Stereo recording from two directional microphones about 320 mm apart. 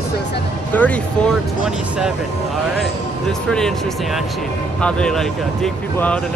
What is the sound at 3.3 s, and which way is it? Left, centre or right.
Speech, centre.